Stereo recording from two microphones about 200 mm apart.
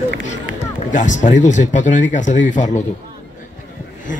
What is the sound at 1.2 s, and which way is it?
Speech, 40° left (ahead or behind).